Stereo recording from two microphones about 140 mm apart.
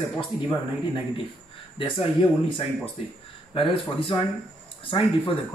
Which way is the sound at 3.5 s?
40° left (ahead or behind).